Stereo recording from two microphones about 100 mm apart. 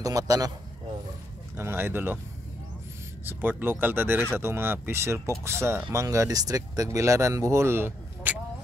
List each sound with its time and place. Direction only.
0.0 s speech: 35° right (ahead or behind)
1.6 s speech: 25° right (ahead or behind)
3.3 s speech: 20° right (ahead or behind)